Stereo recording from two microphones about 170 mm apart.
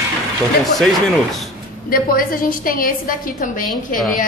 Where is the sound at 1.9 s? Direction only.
60° left (ahead or behind).